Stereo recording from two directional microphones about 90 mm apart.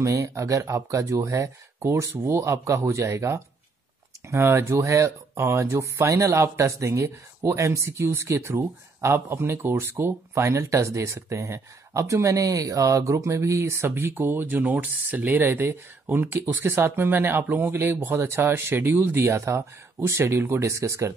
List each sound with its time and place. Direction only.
0.0 s speech: 35° right (ahead or behind)